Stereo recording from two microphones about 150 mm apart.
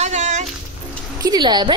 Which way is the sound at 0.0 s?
50° right (ahead or behind).